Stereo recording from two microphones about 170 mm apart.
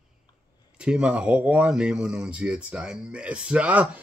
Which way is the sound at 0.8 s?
5° right (ahead or behind).